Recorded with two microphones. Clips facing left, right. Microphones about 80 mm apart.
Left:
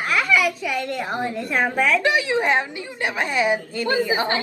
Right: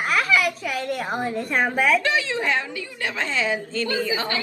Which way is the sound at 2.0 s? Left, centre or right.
Left.